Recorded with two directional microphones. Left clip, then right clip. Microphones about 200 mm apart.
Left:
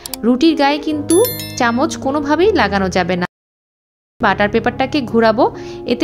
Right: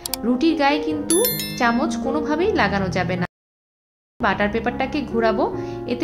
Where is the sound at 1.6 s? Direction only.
35° left (ahead or behind).